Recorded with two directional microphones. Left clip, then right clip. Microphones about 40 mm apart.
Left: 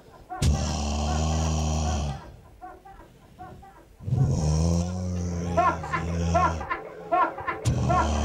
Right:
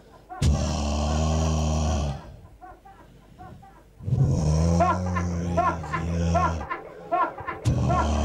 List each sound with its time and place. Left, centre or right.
0.4 s vehicle: left
4.1 s vehicle: left
5.7 s a sound: left
6.4 s music: centre
6.7 s a sound: left
7.6 s music: left